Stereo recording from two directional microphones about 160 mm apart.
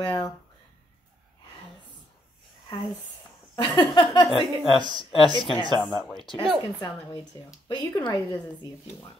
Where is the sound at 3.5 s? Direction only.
25° left (ahead or behind).